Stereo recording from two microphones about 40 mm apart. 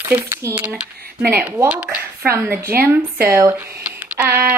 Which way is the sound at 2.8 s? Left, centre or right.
Right.